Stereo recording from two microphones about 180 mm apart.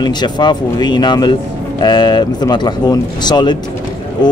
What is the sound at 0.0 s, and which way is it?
Speech, 25° left (ahead or behind).